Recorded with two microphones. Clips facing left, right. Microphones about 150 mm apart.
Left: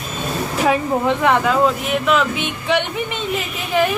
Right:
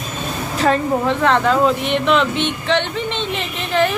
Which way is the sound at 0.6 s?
15° left (ahead or behind).